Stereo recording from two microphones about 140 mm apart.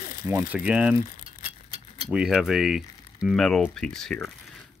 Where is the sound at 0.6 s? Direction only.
10° right (ahead or behind).